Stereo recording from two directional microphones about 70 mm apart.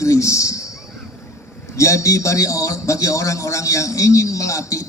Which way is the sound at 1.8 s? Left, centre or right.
Left.